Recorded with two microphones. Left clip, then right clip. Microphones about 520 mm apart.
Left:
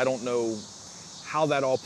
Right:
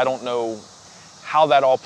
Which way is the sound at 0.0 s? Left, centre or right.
Right.